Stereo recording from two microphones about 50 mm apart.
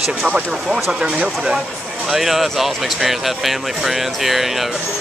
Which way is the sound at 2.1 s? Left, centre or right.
Centre.